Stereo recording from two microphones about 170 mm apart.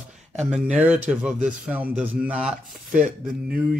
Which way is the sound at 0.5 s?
5° right (ahead or behind).